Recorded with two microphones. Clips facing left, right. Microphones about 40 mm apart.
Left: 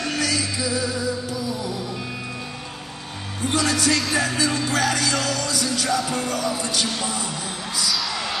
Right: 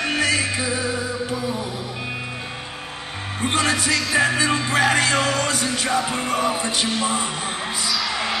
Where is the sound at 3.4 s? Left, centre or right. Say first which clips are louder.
Right 1 dB; right.